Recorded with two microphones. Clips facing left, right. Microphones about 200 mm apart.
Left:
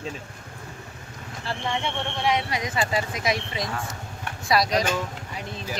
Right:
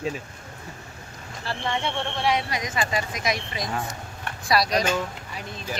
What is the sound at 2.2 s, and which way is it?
Speech, 20° left (ahead or behind).